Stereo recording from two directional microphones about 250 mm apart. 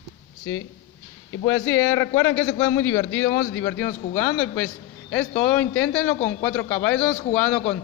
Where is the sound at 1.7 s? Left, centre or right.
Centre.